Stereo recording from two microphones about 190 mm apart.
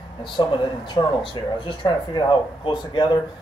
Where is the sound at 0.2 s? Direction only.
25° left (ahead or behind).